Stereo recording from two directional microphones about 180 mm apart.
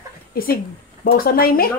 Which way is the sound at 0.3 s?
55° left (ahead or behind).